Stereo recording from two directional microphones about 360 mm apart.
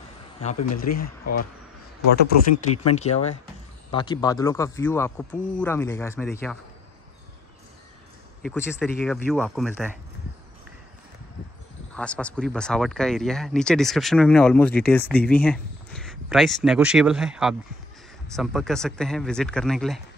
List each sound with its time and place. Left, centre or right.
0.9 s speech: left
2.5 s speech: left
2.9 s speech: centre
8.5 s speech: centre
11.9 s speech: centre